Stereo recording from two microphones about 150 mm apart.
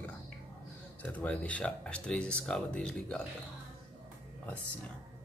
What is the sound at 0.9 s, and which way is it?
Speech, 10° left (ahead or behind).